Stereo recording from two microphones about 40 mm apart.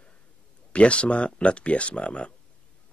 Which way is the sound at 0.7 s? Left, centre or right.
Left.